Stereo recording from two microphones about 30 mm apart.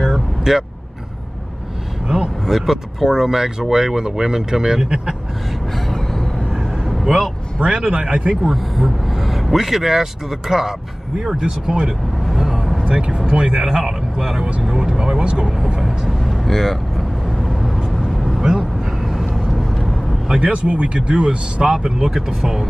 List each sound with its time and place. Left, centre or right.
0.0 s vehicle: centre
2.4 s speech: centre; by 5.1 s right
6.5 s vehicle: centre
7.6 s a man's voice: right
8.5 s speech: centre; by 11.9 s right
12.3 s vehicle: centre
12.8 s speech: right
13.6 s speech: centre
15.8 s speech: centre
17.4 s vehicle: centre
20.3 s speech: right
21.6 s speech: centre